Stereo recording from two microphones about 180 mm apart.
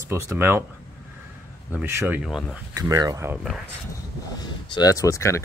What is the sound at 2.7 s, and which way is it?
Speech, 20° right (ahead or behind).